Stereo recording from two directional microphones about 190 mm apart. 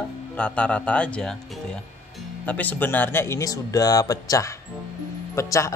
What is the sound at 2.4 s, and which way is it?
Speech, 10° left (ahead or behind).